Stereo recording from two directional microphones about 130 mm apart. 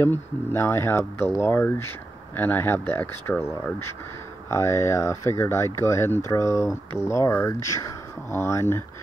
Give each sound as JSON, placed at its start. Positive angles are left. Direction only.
{"t": 0.0, "sound": "speech", "side_deg": 15}